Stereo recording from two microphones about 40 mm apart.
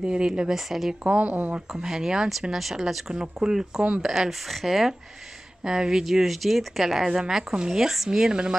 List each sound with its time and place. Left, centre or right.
0.0 s speech: right; by 0.9 s centre
1.1 s speech: right
1.7 s speech: centre
6.1 s speech: centre; by 7.8 s right
7.8 s speech: centre
8.1 s speech: centre